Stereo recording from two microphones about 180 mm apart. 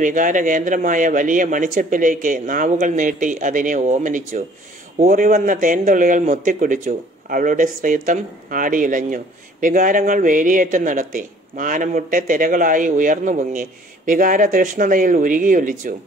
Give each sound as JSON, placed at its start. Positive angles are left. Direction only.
{"t": 0.0, "sound": "a man's voice", "side_deg": -45}